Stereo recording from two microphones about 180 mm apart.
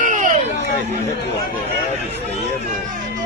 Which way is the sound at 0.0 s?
45° right (ahead or behind).